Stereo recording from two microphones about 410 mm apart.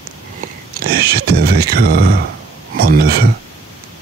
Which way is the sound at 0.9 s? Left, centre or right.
Right.